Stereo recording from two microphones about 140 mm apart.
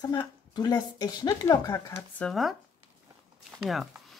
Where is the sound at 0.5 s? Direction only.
30° left (ahead or behind).